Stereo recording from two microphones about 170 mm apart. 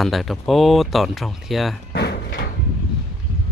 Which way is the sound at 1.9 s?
70° left (ahead or behind).